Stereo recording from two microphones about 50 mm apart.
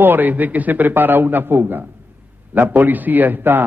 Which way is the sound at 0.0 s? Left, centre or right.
Right.